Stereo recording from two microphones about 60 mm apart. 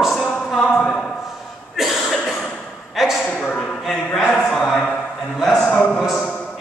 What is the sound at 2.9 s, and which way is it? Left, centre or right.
Speech, centre.